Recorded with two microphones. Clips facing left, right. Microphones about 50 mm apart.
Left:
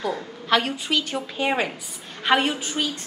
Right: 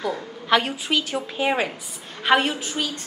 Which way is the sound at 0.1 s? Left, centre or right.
Centre.